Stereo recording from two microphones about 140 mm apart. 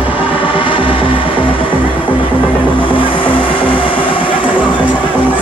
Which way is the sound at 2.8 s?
40° left (ahead or behind).